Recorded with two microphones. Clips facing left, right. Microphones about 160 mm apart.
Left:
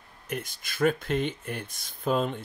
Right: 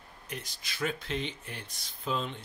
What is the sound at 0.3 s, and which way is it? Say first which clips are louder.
Speech: left 7 dB; 50° left (ahead or behind).